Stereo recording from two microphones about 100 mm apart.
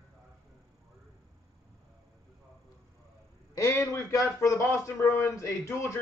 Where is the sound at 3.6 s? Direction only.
30° left (ahead or behind).